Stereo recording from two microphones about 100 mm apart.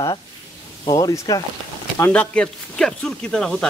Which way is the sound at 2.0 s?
10° left (ahead or behind).